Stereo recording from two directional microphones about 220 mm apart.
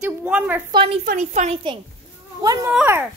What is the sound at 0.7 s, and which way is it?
Speech, 25° right (ahead or behind).